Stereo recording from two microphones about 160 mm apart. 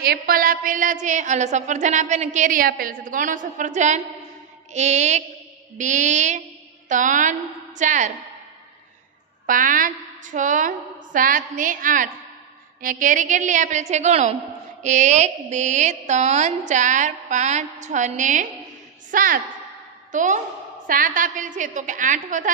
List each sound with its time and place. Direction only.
0.0 s a woman's voice: 70° right (ahead or behind); by 8.1 s 50° right (ahead or behind)
9.5 s a woman's voice: 55° right (ahead or behind)